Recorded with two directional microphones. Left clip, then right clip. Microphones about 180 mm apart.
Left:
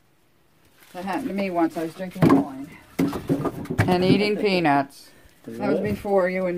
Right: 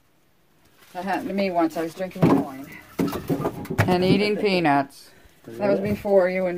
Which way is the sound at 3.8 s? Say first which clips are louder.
Left 1 dB; centre (ahead or behind).